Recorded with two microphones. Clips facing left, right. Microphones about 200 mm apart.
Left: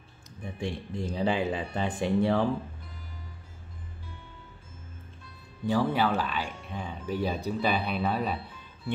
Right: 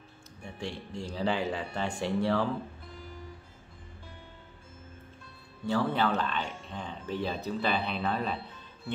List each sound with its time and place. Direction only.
0.4 s speech: 15° left (ahead or behind)
5.7 s speech: 10° left (ahead or behind)